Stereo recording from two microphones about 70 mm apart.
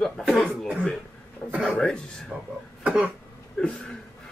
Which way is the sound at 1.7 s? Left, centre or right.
Centre.